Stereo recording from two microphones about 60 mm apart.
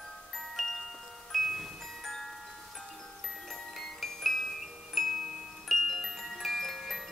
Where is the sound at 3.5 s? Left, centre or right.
Centre.